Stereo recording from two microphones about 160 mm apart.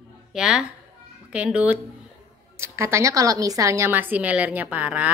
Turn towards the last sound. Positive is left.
turn(degrees=-10)  # may be behind; listen again after turning